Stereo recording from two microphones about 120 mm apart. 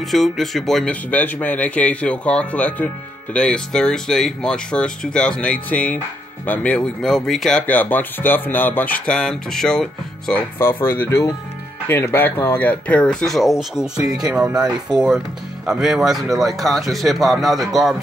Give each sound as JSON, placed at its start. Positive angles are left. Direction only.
{"t": 0.0, "sound": "speech", "side_deg": 0}
{"t": 10.6, "sound": "speech", "side_deg": 20}